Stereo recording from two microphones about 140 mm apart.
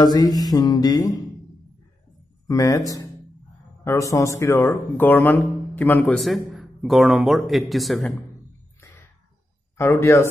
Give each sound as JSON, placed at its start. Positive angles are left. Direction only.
{"t": 0.0, "sound": "music", "side_deg": 30}
{"t": 2.4, "sound": "speech", "side_deg": 25}
{"t": 3.8, "sound": "speech", "side_deg": 20}
{"t": 6.1, "sound": "a man's voice", "side_deg": 0}
{"t": 8.8, "sound": "a sound", "side_deg": 20}
{"t": 9.8, "sound": "music", "side_deg": 20}